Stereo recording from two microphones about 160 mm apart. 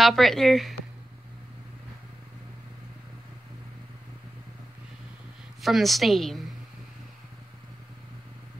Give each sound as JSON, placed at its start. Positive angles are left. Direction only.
{"t": 0.0, "sound": "a woman's voice", "side_deg": 0}
{"t": 5.6, "sound": "a woman's voice", "side_deg": 0}